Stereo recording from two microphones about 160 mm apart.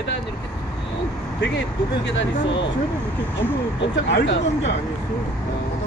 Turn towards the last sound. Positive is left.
turn(degrees=90)